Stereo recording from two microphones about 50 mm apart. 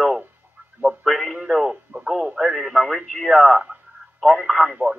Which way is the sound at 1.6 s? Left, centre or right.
Centre.